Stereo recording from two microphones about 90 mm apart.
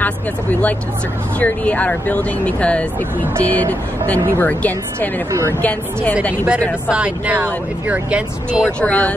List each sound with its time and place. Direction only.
0.0 s a woman's voice: 15° left (ahead or behind)
6.9 s speech: 15° right (ahead or behind)
8.6 s speech: 15° left (ahead or behind)